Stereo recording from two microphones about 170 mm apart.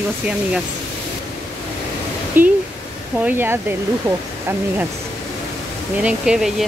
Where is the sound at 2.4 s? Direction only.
10° right (ahead or behind).